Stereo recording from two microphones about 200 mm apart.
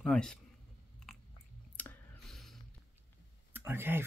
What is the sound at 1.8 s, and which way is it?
Clicking, 5° left (ahead or behind).